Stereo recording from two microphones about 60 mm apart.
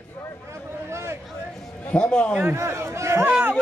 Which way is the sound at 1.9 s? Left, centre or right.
Centre.